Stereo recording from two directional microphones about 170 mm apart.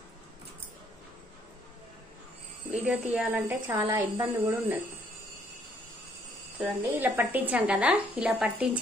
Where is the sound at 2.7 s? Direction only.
5° right (ahead or behind).